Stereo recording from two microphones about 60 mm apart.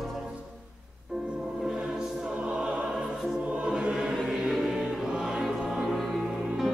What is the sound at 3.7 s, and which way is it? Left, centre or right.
Music, centre.